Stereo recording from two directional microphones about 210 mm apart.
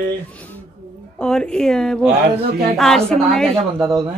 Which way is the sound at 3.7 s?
20° right (ahead or behind).